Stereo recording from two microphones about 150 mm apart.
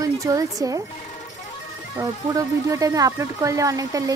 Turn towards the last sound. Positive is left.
turn(degrees=-25)  # may be behind; listen again after turning